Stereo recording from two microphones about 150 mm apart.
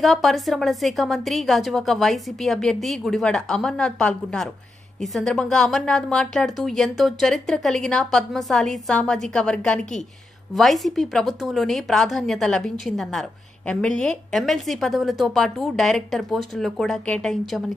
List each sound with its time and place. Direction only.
0.0 s a woman's voice: centre (ahead or behind)